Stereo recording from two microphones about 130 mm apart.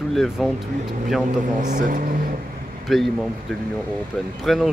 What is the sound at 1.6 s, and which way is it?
Speech, 85° right.